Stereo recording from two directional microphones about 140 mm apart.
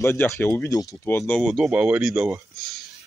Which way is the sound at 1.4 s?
5° right (ahead or behind).